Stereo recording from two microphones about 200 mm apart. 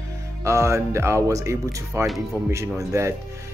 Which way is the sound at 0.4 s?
15° right (ahead or behind).